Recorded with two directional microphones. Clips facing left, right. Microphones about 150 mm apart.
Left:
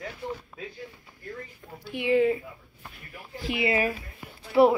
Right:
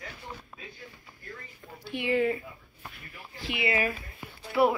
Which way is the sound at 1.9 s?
15° left (ahead or behind).